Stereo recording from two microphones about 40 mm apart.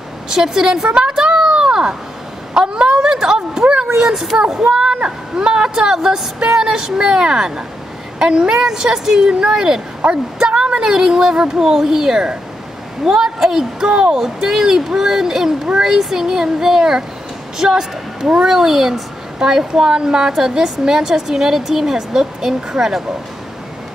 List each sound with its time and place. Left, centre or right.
0.3 s a woman's voice: centre
0.8 s speech: right
1.1 s a sound: centre
3.8 s speech: centre
4.6 s speech: right
4.9 s a woman's voice: right
14.1 s a woman's voice: centre